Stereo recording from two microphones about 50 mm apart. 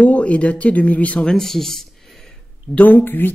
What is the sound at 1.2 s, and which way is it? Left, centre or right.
Speech, centre.